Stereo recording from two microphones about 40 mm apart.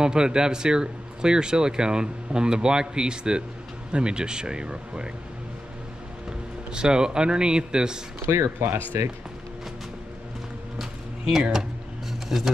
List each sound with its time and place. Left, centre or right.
0.0 s speech: centre
6.7 s speech: right
8.2 s speech: right
10.8 s a sound: centre